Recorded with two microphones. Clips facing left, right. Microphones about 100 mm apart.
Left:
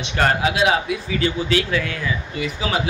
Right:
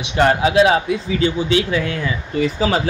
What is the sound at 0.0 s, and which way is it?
Speech, 20° right (ahead or behind).